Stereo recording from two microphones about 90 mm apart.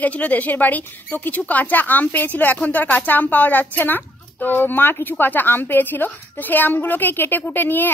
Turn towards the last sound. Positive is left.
turn(degrees=20)  # may be behind; listen again after turning